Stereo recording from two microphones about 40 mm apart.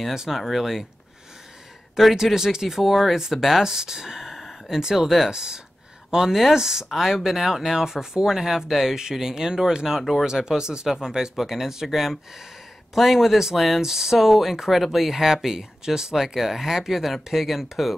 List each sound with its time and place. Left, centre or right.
0.1 s speech: centre
2.1 s speech: centre
4.4 s a sound: centre
4.7 s speech: centre
5.3 s speech: centre
16.2 s speech: centre